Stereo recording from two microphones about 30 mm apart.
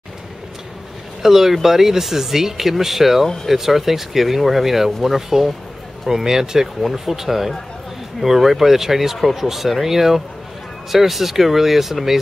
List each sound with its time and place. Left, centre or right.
1.2 s speech: centre
6.8 s speech: centre